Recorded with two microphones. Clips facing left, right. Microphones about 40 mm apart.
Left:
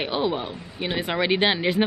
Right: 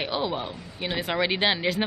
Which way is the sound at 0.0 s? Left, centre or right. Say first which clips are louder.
Left 3 dB; centre.